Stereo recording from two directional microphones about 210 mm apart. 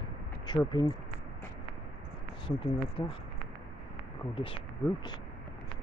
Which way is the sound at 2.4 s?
25° left (ahead or behind).